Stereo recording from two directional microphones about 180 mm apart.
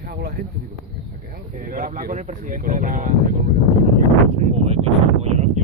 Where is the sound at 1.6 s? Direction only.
50° right (ahead or behind).